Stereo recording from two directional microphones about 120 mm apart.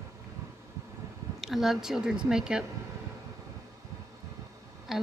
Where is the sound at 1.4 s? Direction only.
Centre (ahead or behind).